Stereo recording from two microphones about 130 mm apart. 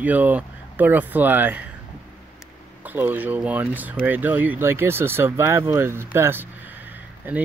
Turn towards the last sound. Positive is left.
turn(degrees=-10)  # may be behind; listen again after turning